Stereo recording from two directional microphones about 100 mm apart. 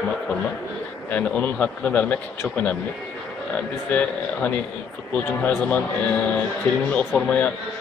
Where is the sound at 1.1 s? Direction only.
15° left (ahead or behind).